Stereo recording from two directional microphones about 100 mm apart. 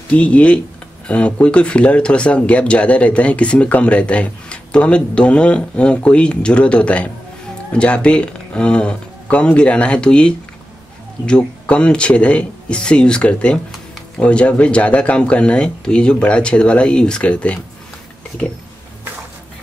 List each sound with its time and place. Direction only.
0.1 s speech: 10° left (ahead or behind)